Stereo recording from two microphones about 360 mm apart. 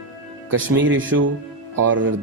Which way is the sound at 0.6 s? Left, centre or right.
Right.